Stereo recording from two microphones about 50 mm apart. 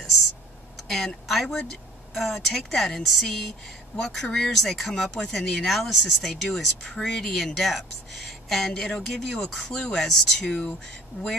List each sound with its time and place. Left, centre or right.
0.0 s a sound: centre
0.7 s speech: centre
11.1 s speech: left